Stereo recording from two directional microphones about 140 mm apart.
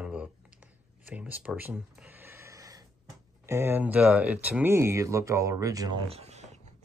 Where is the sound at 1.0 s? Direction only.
10° right (ahead or behind); by 2.9 s 25° right (ahead or behind).